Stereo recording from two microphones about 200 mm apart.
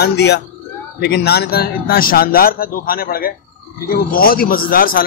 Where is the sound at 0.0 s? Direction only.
55° left (ahead or behind).